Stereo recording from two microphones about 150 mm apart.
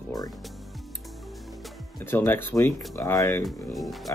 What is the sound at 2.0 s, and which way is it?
Speech, 15° left (ahead or behind).